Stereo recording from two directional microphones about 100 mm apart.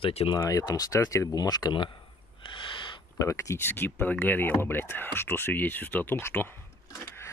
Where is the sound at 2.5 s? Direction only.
55° left (ahead or behind).